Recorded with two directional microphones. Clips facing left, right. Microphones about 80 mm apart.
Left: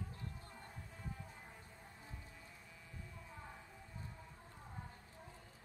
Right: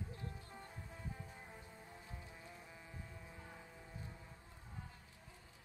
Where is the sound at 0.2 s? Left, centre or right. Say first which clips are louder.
Right 1 dB; right.